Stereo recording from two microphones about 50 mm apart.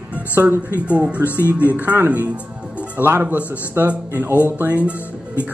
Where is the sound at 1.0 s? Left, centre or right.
Right.